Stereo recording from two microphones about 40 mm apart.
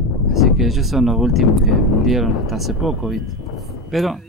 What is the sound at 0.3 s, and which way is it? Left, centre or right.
Speech, centre.